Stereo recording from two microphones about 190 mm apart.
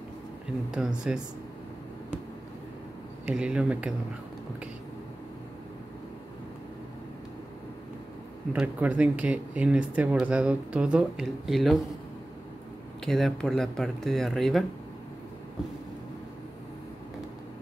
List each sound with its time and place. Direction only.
0.7 s speech: 5° right (ahead or behind)
3.3 s speech: 5° right (ahead or behind)
8.5 s speech: 5° right (ahead or behind)
13.0 s speech: centre (ahead or behind)